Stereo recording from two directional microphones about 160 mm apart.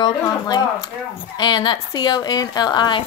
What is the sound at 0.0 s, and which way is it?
Speech, 25° left (ahead or behind).